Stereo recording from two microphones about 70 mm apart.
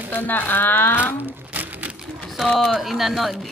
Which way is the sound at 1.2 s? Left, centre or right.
Right.